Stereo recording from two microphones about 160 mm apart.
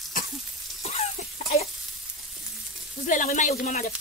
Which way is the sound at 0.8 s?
40° left (ahead or behind).